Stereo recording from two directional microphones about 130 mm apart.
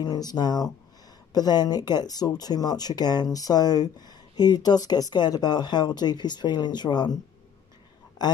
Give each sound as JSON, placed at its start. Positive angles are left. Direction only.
{"t": 0.0, "sound": "speech", "side_deg": 30}
{"t": 8.2, "sound": "a man's voice", "side_deg": 30}